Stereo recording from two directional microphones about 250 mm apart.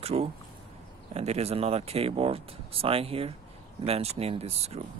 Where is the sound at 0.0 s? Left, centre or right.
Right.